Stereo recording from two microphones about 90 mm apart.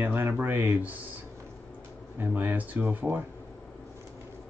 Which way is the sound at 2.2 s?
20° right (ahead or behind).